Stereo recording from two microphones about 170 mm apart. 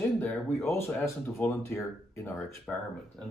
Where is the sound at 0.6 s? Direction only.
15° left (ahead or behind).